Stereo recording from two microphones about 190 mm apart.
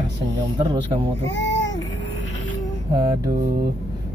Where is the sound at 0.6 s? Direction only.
20° right (ahead or behind).